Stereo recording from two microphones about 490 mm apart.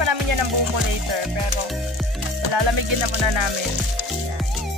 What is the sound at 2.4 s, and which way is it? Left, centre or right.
Speech, right.